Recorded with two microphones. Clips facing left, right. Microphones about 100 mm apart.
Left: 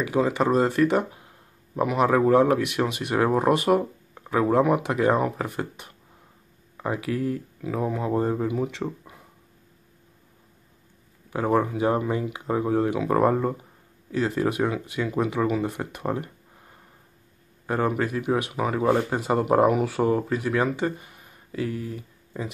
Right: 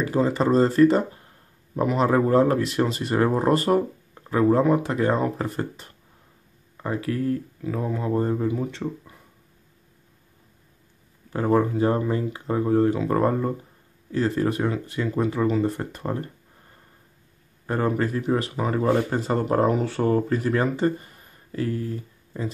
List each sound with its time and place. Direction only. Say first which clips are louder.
0.0 s speech: right 1 dB; 10° left (ahead or behind)
11.2 s speech: right 2 dB; 10° left (ahead or behind)
17.6 s speech: right 1 dB; 10° left (ahead or behind)